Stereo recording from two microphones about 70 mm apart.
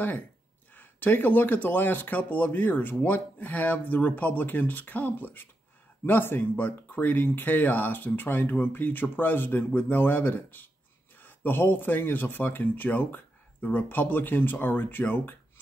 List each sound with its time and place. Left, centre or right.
0.7 s speech: left